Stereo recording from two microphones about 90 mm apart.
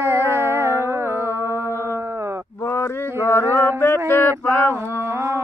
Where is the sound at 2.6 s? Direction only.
25° left (ahead or behind).